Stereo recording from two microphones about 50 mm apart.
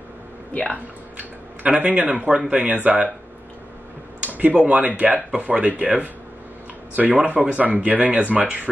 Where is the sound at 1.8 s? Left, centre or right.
Right.